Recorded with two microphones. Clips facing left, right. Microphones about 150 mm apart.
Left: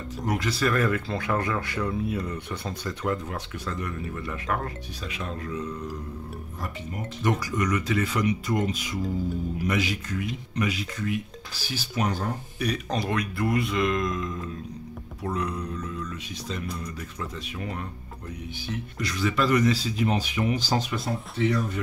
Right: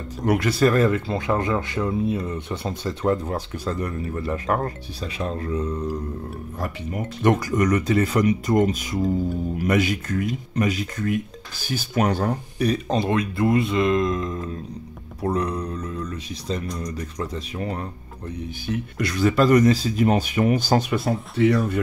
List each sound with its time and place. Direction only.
0.2 s speech: 65° right (ahead or behind)
0.7 s speech: 30° right (ahead or behind)
6.6 s speech: 60° right (ahead or behind)
12.5 s speech: 30° right (ahead or behind)
18.9 s speech: 55° right (ahead or behind); by 21.7 s 70° right (ahead or behind)